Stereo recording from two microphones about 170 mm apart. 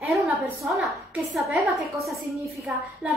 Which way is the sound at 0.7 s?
Centre (ahead or behind).